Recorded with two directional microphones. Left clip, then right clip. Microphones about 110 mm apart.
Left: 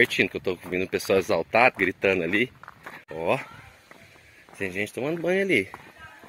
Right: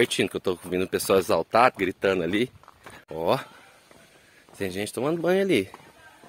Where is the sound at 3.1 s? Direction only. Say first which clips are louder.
Right 1 dB; 50° right (ahead or behind).